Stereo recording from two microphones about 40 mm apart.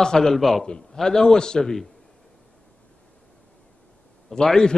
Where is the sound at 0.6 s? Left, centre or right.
Centre.